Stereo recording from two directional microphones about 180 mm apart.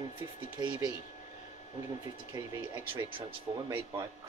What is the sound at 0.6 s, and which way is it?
Speech, 20° right (ahead or behind).